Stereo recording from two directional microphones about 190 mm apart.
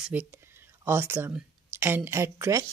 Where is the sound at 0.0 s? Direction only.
10° right (ahead or behind).